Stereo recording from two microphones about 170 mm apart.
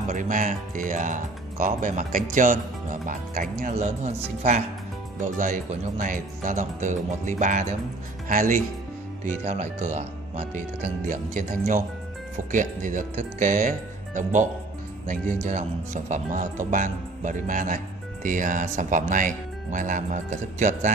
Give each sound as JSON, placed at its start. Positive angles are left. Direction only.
{"t": 0.1, "sound": "speech", "side_deg": -50}
{"t": 3.7, "sound": "speech", "side_deg": -40}
{"t": 9.2, "sound": "speech", "side_deg": -40}
{"t": 11.1, "sound": "speech", "side_deg": -50}